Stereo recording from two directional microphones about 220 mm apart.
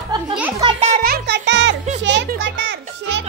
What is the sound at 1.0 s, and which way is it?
Music, 45° right (ahead or behind).